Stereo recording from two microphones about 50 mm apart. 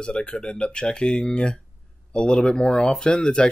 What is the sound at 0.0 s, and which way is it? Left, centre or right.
Speech, left.